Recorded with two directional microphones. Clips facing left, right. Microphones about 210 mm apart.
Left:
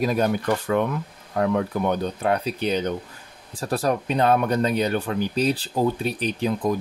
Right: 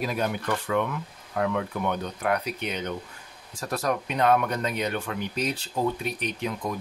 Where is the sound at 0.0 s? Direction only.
40° left (ahead or behind).